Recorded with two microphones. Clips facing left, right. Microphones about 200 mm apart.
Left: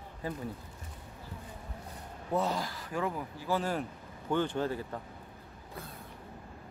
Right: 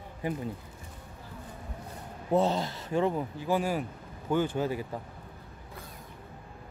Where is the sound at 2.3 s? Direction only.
25° right (ahead or behind).